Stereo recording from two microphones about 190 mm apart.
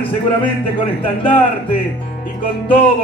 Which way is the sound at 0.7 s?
25° left (ahead or behind).